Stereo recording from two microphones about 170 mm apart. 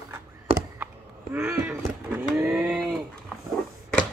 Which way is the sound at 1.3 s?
10° right (ahead or behind).